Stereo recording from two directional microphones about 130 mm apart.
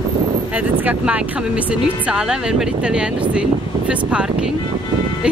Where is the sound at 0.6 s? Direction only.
10° right (ahead or behind).